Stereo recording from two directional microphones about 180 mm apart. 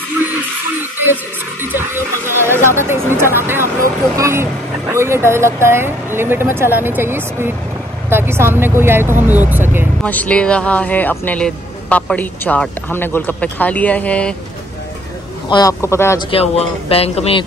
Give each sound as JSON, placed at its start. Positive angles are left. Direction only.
{"t": 1.6, "sound": "a sound", "side_deg": -10}
{"t": 2.8, "sound": "speech", "side_deg": -15}
{"t": 10.0, "sound": "speech", "side_deg": 10}
{"t": 15.4, "sound": "speech", "side_deg": 20}
{"t": 16.3, "sound": "speech", "side_deg": 30}